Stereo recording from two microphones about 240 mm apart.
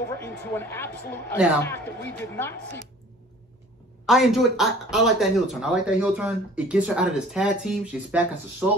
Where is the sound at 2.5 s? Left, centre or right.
Right.